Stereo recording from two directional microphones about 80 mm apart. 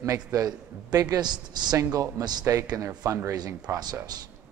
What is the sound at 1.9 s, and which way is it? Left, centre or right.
A man's voice, right.